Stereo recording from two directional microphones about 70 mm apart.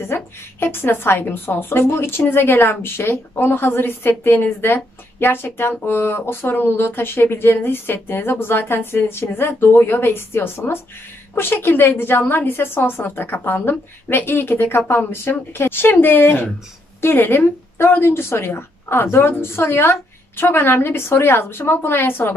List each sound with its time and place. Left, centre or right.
0.0 s a woman's voice: left